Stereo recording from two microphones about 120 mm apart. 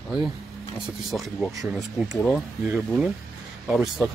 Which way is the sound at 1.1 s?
Centre (ahead or behind).